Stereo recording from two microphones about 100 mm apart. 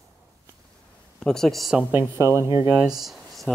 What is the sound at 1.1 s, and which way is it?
Speech, 5° left (ahead or behind).